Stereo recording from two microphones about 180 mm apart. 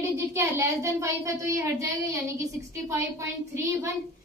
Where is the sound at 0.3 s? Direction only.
15° right (ahead or behind).